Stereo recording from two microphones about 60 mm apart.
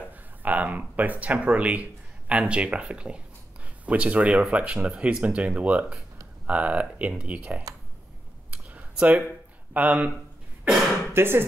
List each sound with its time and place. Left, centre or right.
0.4 s speech: right
8.9 s speech: right
11.1 s speech: right